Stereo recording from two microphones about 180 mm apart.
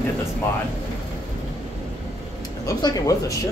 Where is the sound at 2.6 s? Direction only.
20° left (ahead or behind).